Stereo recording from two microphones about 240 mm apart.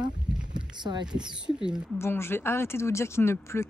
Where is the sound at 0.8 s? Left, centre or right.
Centre.